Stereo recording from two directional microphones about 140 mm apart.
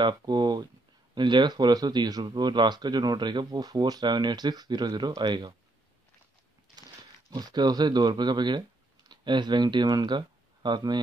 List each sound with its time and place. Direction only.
0.0 s speech: 30° right (ahead or behind)
7.2 s speech: 30° right (ahead or behind)